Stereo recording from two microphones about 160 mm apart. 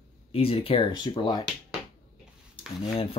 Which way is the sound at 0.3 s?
35° left (ahead or behind).